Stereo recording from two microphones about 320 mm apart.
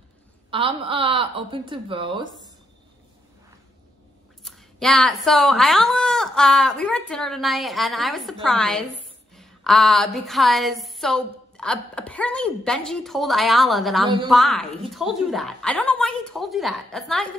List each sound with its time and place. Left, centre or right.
0.5 s a woman's voice: centre
4.4 s a woman's voice: centre